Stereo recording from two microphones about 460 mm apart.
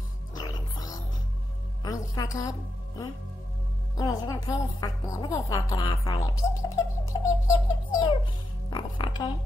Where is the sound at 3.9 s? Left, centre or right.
Centre.